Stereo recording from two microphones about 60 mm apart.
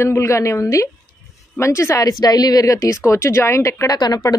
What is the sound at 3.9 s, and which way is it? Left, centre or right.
Speech, left.